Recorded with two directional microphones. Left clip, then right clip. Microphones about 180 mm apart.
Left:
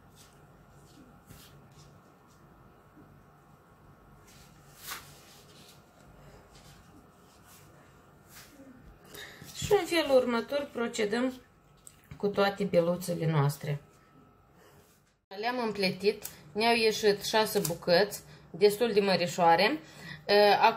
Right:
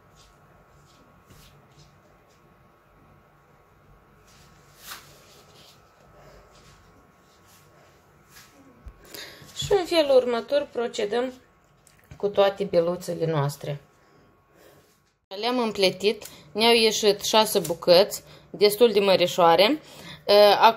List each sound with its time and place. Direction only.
9.7 s a woman's voice: 30° right (ahead or behind)
15.2 s a woman's voice: 35° right (ahead or behind)